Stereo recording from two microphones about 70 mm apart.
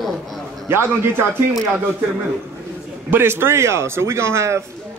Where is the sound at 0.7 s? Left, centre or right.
Right.